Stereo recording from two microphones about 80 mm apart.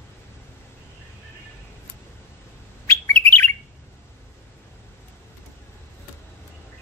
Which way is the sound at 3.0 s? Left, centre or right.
Left.